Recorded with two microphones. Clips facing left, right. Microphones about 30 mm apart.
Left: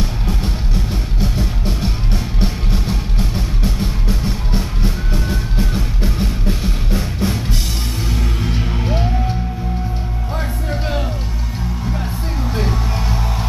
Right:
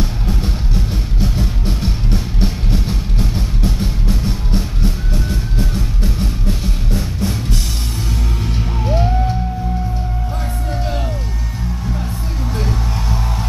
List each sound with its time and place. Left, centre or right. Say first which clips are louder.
0.0 s music: right 1 dB; centre
10.7 s music: left 1 dB; centre
12.5 s music: left 1 dB; centre